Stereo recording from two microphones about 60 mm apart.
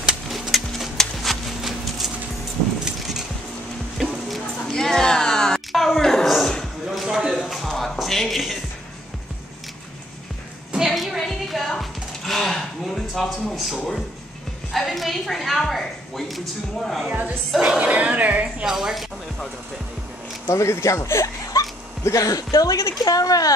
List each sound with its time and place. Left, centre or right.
0.3 s a sound: centre
2.8 s keys jangling: centre
4.0 s music: centre
4.7 s a sound: centre
6.9 s a sound: centre
10.9 s music: centre
14.7 s speech: centre
17.6 s speech: centre
18.7 s speech: centre
20.4 s speech: left